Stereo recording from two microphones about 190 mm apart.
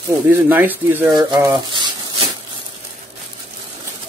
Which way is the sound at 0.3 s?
10° right (ahead or behind).